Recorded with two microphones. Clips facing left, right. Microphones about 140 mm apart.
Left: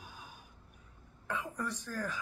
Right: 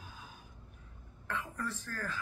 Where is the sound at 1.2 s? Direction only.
15° left (ahead or behind).